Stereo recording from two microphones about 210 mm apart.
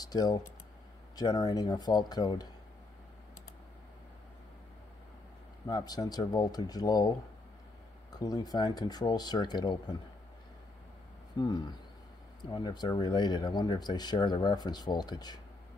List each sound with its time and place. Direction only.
0.0 s speech: 20° left (ahead or behind)
5.7 s speech: 20° left (ahead or behind)
11.3 s speech: 20° left (ahead or behind)